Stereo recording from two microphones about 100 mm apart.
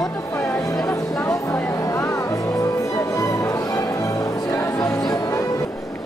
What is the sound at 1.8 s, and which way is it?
Music, 30° left (ahead or behind).